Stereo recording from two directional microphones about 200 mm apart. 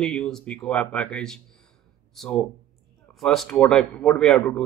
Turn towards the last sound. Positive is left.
turn(degrees=5)  # may be behind; listen again after turning